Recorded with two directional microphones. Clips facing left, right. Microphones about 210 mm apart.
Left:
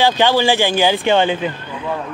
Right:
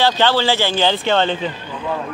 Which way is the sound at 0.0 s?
15° left (ahead or behind).